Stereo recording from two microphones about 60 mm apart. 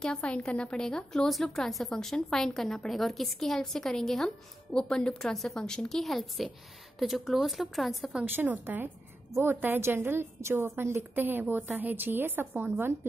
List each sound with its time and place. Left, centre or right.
0.0 s a woman's voice: centre
8.4 s a woman's voice: right